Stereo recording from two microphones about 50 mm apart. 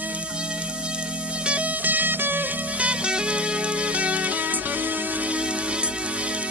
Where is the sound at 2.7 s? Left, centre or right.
Right.